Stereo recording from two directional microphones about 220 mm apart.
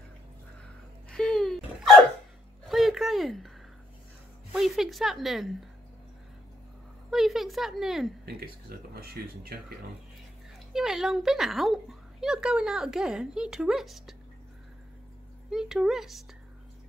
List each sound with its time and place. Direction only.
1.1 s hiccup: 5° left (ahead or behind)
2.6 s a sound: centre (ahead or behind)
4.5 s a woman's voice: centre (ahead or behind)
7.1 s a woman's voice: centre (ahead or behind)
8.6 s speech: 45° right (ahead or behind)
10.7 s a woman's voice: centre (ahead or behind)
15.5 s a woman's voice: centre (ahead or behind)